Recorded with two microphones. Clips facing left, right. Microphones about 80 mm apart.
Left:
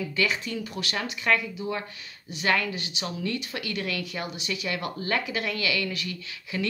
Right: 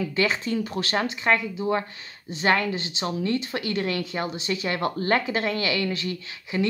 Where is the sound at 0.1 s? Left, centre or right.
Right.